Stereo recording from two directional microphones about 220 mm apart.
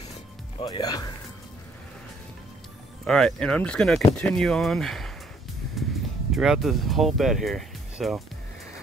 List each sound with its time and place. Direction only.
0.6 s speech: 20° left (ahead or behind)
3.1 s speech: 5° left (ahead or behind)
6.3 s speech: centre (ahead or behind)